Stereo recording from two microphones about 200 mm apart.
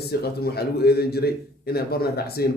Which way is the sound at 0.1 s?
50° left (ahead or behind).